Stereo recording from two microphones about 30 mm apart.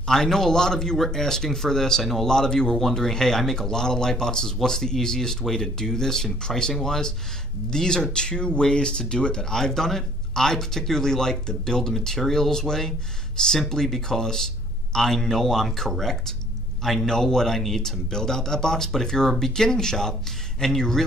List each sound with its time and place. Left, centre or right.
0.0 s speech: centre
18.1 s speech: centre